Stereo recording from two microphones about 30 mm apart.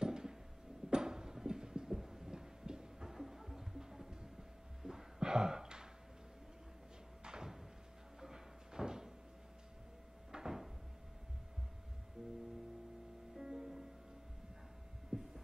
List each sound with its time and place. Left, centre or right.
0.0 s a sound: right
3.1 s music: centre
4.8 s a sound: centre
7.2 s a sound: right
8.2 s door: centre
10.3 s cupboard open or close: right
12.2 s music: centre
13.4 s music: centre
15.0 s heart sounds: centre